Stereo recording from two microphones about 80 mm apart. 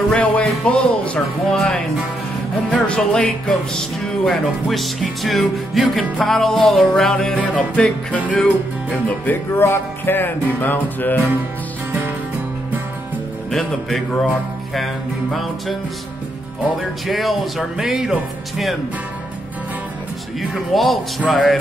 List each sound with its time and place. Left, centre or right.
0.2 s music: centre
9.2 s music: left
13.5 s music: centre
16.7 s music: centre
20.5 s music: centre